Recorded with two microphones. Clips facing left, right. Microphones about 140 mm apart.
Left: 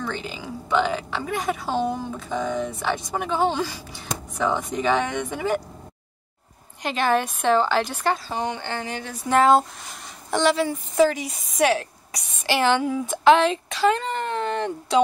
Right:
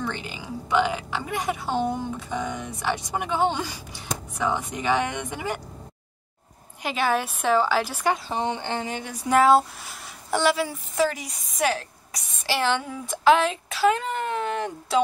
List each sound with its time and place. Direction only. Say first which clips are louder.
0.4 s speech: even; 10° right (ahead or behind)
6.8 s speech: left 2 dB; 10° right (ahead or behind)
8.3 s a sound: right 1 dB; 25° right (ahead or behind)
9.3 s a woman's voice: left 1 dB; 5° right (ahead or behind)